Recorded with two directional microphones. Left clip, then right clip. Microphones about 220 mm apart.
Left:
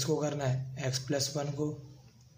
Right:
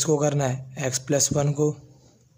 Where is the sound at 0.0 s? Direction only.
45° right (ahead or behind).